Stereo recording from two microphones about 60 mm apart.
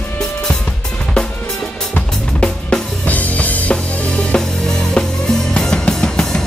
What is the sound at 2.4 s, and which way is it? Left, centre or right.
Drum, left.